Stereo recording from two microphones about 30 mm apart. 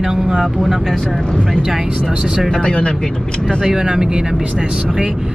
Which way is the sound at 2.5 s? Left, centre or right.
Left.